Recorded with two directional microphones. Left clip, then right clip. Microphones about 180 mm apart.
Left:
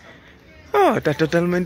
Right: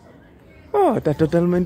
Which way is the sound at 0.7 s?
15° right (ahead or behind).